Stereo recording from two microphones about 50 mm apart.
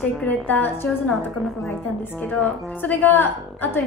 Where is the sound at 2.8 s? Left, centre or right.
Left.